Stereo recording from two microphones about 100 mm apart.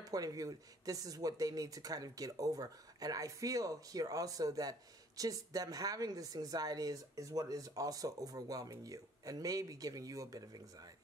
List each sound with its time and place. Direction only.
0.0 s speech: 35° right (ahead or behind)